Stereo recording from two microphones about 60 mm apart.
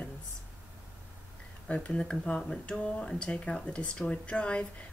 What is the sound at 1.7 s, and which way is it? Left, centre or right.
Speech, centre.